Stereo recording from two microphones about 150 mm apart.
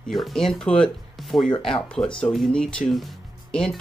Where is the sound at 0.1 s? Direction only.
Centre (ahead or behind).